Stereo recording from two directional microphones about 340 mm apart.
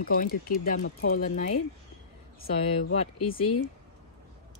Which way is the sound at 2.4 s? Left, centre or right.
Left.